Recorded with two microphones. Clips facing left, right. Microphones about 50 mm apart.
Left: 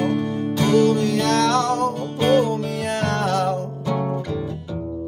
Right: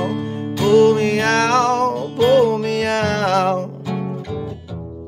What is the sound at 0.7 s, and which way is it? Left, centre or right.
Music, right.